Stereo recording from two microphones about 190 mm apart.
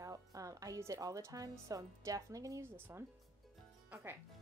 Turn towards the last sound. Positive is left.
turn(degrees=-10)  # may be behind; listen again after turning